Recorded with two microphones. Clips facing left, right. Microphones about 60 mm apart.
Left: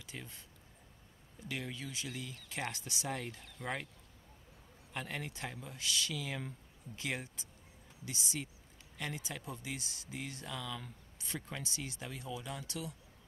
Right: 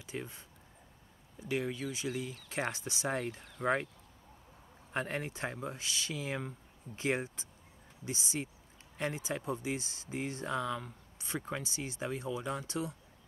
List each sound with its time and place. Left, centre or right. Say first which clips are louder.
0.0 s speech: right 7 dB; right
1.5 s speech: right 7 dB; right
4.9 s speech: right 6 dB; right